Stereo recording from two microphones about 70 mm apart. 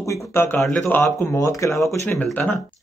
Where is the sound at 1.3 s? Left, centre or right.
Left.